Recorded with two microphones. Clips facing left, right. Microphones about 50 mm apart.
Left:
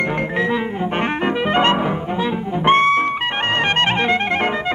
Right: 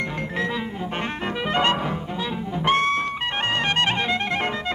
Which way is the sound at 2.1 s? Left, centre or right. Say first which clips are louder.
Left 7 dB; left.